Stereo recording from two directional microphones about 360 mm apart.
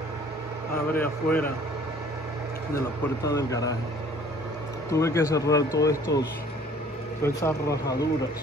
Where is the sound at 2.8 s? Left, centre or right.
Centre.